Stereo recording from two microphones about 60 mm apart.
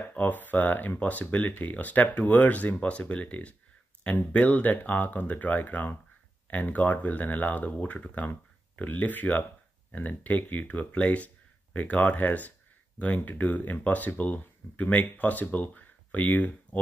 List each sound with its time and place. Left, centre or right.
0.1 s speech: left